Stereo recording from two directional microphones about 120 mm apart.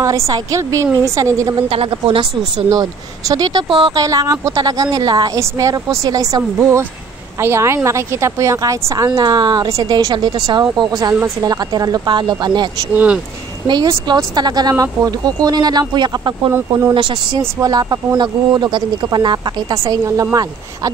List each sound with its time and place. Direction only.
0.0 s a woman's voice: 30° right (ahead or behind)
1.7 s a woman's voice: 50° right (ahead or behind)
2.7 s speech: 30° right (ahead or behind)
3.6 s a woman's voice: 45° right (ahead or behind)
3.9 s a woman's voice: 30° right (ahead or behind)
6.6 s a woman's voice: 20° right (ahead or behind); by 12.6 s 40° right (ahead or behind)
12.9 s speech: 10° right (ahead or behind)
13.7 s speech: 35° right (ahead or behind)
16.5 s a woman's voice: 20° right (ahead or behind)
16.9 s speech: 40° right (ahead or behind)
17.4 s speech: 30° right (ahead or behind)